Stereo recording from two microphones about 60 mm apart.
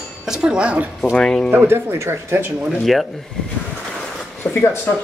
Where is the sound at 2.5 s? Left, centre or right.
Centre.